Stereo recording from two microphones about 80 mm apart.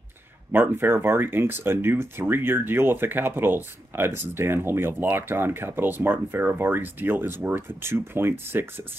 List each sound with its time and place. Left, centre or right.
0.5 s speech: right